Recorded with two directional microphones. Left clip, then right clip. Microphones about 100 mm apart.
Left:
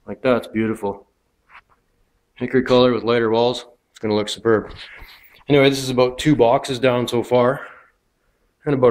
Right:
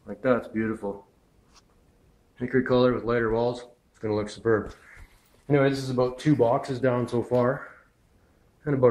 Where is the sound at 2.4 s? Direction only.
45° left (ahead or behind).